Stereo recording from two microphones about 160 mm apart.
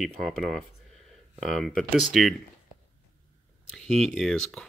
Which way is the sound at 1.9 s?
Centre (ahead or behind).